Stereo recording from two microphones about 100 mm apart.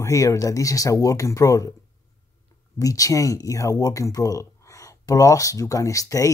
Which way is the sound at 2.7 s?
35° left (ahead or behind).